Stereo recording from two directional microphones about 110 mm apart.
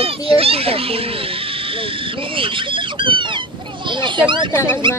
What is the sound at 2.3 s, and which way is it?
Speech, 50° right (ahead or behind).